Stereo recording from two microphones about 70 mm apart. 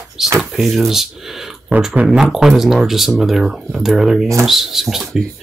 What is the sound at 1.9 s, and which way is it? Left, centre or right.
Speech, centre.